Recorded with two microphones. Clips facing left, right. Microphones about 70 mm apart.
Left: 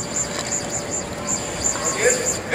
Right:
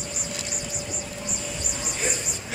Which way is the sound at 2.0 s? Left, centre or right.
Left.